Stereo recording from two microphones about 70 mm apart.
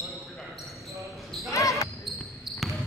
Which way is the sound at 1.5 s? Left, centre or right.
Left.